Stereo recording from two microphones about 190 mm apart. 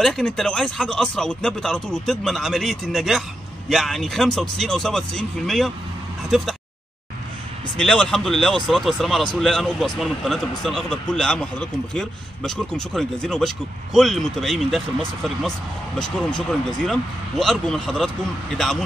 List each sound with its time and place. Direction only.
0.0 s speech: centre (ahead or behind)
7.7 s speech: 5° left (ahead or behind)